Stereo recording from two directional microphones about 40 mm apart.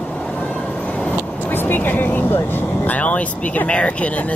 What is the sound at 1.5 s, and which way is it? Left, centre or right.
Speech, left.